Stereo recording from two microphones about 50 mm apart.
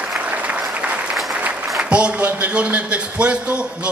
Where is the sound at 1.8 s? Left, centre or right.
Right.